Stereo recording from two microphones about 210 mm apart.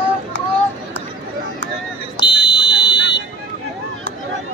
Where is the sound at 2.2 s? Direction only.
55° left (ahead or behind).